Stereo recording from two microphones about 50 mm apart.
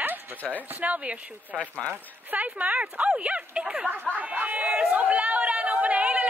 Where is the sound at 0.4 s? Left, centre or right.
Left.